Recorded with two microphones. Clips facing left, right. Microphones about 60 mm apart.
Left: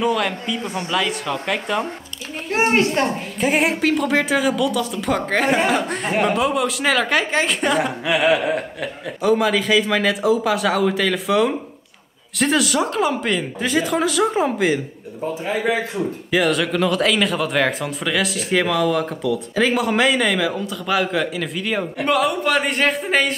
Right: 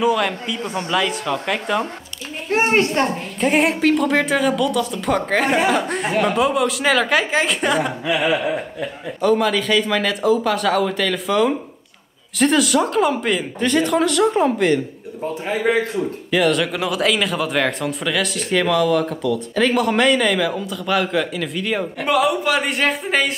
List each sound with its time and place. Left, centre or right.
0.0 s speech: centre
3.3 s speech: centre
8.0 s a sound: left
9.2 s speech: centre
16.3 s speech: centre